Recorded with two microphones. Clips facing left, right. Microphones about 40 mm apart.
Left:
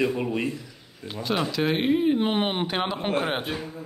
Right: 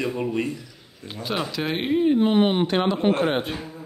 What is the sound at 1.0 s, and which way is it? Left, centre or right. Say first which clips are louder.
Speech: left 1 dB; centre.